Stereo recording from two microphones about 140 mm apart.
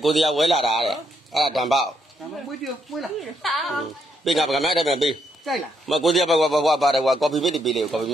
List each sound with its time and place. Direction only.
0.0 s speech: centre (ahead or behind)